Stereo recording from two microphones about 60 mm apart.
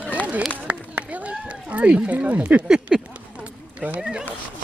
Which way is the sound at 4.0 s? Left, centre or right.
Centre.